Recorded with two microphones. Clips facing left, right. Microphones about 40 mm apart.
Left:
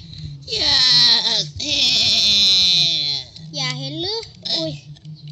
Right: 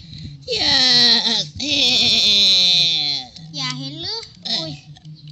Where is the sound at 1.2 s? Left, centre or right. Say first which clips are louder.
Right 1 dB; right.